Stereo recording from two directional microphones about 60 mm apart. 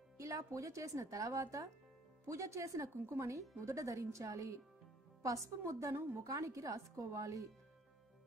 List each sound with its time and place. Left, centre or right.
0.2 s speech: right